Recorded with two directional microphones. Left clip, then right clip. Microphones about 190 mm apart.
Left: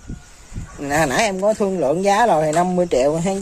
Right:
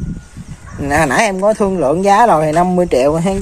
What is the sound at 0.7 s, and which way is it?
Speech, centre (ahead or behind).